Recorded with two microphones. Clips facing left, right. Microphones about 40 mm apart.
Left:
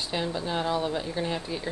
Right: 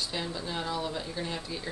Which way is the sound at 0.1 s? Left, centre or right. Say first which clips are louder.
Left 5 dB; left.